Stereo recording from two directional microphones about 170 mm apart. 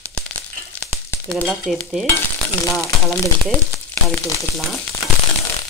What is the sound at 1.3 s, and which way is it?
Stir, centre (ahead or behind).